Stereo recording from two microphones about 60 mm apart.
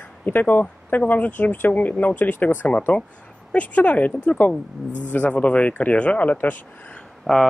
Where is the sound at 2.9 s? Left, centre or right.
Centre.